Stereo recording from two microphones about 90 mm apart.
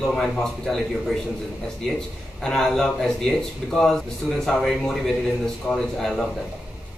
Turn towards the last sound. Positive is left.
turn(degrees=5)  # may be behind; listen again after turning